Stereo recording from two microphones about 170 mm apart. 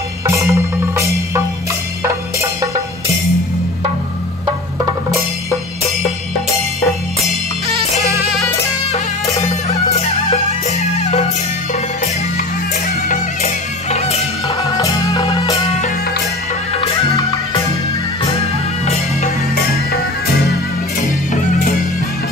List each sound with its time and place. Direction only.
0.3 s music: 15° right (ahead or behind)
9.2 s music: 20° left (ahead or behind)
9.5 s music: 40° left (ahead or behind)
13.1 s music: 40° left (ahead or behind)
14.8 s music: 25° left (ahead or behind)